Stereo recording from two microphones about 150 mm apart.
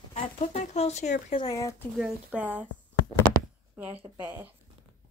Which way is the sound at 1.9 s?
10° right (ahead or behind).